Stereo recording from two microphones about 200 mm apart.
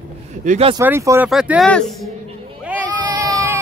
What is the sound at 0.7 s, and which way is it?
Speech, 15° right (ahead or behind).